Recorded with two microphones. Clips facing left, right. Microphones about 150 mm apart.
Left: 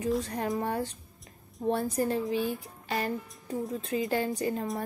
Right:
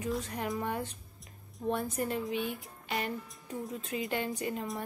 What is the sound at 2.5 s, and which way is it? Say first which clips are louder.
Music: left 4 dB; 35° left (ahead or behind).